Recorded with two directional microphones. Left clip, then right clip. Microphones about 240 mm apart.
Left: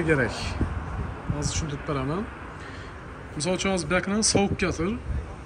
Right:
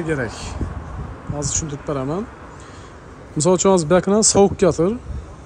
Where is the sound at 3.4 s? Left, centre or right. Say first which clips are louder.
Right 11 dB; centre.